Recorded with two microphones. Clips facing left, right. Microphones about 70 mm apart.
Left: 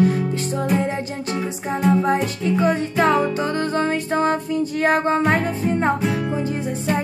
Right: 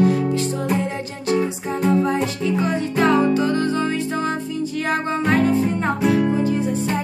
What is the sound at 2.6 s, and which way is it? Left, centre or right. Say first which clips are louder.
Music: left 2 dB; left.